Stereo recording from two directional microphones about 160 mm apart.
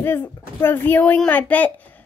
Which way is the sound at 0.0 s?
15° left (ahead or behind).